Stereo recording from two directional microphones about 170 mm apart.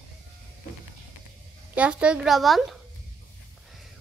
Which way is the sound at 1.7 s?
5° right (ahead or behind).